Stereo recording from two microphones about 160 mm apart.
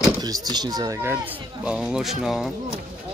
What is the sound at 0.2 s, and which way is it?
Speech, 25° right (ahead or behind).